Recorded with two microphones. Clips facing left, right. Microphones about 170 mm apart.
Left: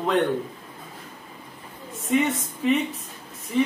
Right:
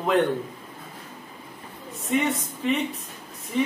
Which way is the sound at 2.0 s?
Centre (ahead or behind).